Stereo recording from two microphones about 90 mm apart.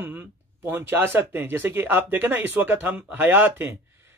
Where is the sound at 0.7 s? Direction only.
25° right (ahead or behind).